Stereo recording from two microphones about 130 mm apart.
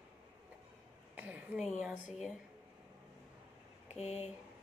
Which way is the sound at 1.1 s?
10° right (ahead or behind).